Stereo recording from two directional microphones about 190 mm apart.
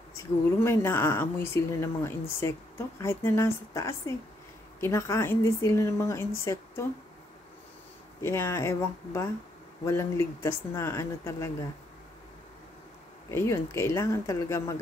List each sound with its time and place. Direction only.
0.1 s speech: 15° left (ahead or behind)
8.2 s speech: 15° left (ahead or behind)
13.3 s speech: 15° left (ahead or behind)